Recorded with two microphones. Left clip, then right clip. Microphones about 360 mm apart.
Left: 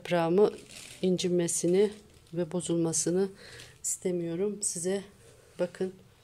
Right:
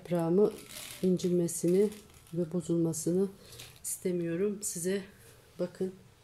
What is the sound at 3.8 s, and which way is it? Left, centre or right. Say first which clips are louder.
Speech: left 2 dB; centre.